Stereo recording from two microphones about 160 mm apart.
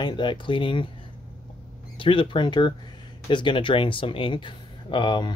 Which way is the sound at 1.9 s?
35° left (ahead or behind).